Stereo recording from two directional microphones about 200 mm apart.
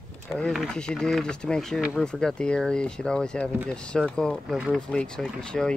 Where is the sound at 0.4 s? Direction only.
Centre (ahead or behind).